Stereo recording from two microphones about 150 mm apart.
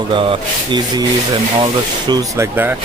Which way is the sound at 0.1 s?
35° right (ahead or behind).